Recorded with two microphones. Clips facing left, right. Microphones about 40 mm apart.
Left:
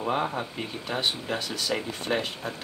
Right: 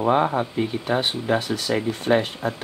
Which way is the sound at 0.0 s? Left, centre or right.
Right.